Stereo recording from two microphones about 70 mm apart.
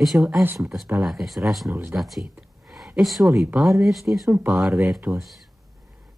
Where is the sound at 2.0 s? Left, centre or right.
Centre.